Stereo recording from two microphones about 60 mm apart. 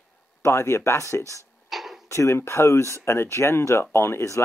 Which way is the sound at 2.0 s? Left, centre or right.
Left.